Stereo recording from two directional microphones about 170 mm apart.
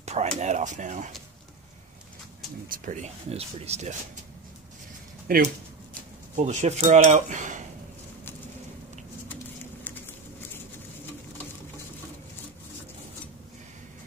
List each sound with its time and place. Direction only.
0.0 s a sound: 40° right (ahead or behind)
0.4 s speech: 45° right (ahead or behind)
2.7 s cutlery: 50° right (ahead or behind)
5.3 s speech: 60° right (ahead or behind)
6.3 s cutlery: 45° right (ahead or behind)